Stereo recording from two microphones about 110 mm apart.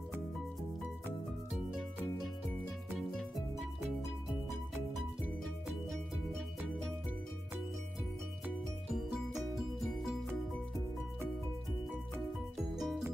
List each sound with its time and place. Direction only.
8.9 s music: centre (ahead or behind)
12.7 s music: centre (ahead or behind)